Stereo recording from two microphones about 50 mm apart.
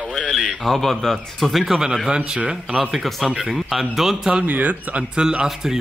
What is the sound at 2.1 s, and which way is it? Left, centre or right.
Speech, centre.